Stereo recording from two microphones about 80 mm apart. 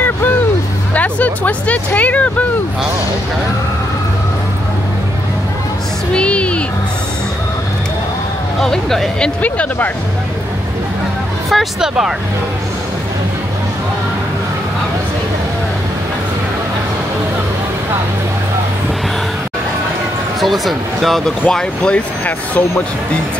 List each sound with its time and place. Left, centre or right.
0.9 s speech: centre
6.1 s music: centre
8.5 s speech: centre
9.4 s speech: centre
11.5 s speech: centre
20.3 s speech: centre